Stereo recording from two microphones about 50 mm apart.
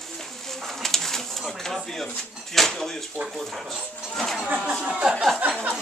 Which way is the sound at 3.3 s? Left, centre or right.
Centre.